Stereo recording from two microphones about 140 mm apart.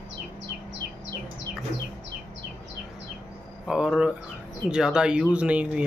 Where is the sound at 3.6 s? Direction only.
5° right (ahead or behind).